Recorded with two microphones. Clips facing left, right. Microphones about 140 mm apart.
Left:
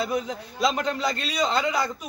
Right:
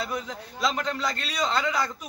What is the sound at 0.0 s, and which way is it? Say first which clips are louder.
A man's voice: left 5 dB; 15° left (ahead or behind).